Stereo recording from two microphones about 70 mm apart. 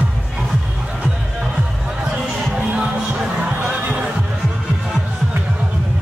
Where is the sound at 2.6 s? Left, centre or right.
Centre.